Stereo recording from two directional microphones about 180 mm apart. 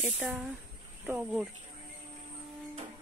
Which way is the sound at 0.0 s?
5° right (ahead or behind).